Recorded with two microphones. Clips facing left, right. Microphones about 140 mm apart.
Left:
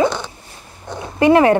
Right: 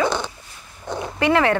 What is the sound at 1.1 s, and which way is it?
Speech, 20° left (ahead or behind).